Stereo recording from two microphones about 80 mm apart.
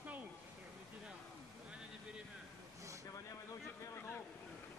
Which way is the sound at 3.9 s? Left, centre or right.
Left.